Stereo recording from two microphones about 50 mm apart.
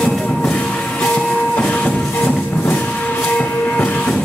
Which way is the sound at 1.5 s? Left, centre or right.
Left.